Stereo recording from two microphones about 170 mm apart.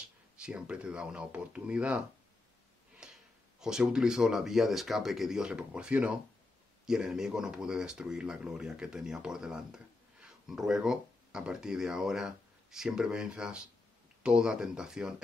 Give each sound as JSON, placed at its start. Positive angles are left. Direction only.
{"t": 0.4, "sound": "speech", "side_deg": -5}
{"t": 3.0, "sound": "speech", "side_deg": -5}